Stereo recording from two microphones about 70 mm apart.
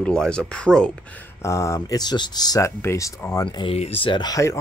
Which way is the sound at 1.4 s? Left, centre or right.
Left.